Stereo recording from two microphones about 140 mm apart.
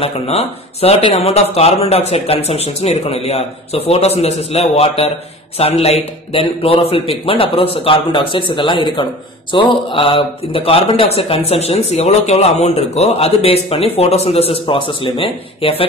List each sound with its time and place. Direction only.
0.0 s a man's voice: 50° left (ahead or behind)